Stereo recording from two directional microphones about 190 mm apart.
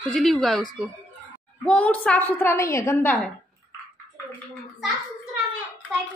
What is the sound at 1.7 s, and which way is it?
A woman's voice, 5° left (ahead or behind).